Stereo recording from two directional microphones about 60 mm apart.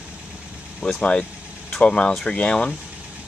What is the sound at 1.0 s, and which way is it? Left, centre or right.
Speech, left.